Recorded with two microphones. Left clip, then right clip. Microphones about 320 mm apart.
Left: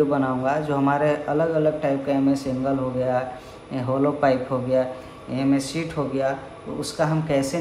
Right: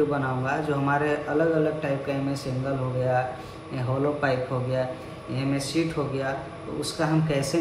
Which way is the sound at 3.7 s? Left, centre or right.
Left.